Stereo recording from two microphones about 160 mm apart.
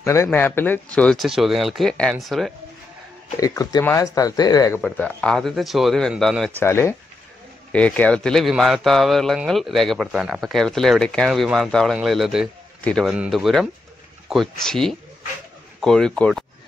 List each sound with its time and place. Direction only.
0.0 s speech: 15° left (ahead or behind); by 2.5 s centre (ahead or behind)
3.3 s speech: 20° left (ahead or behind)
4.8 s speech: 5° left (ahead or behind)
6.5 s speech: 15° left (ahead or behind)